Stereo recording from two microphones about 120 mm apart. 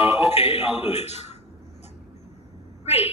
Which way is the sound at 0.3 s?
55° left (ahead or behind).